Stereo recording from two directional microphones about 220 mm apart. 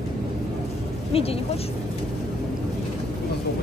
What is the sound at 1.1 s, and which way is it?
Speech, 25° left (ahead or behind).